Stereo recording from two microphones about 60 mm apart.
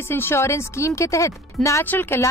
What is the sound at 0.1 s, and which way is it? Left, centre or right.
Speech, left.